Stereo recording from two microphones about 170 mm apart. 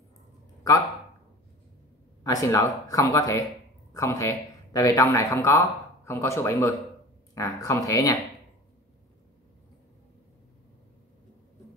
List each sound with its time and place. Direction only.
2.2 s speech: 20° left (ahead or behind)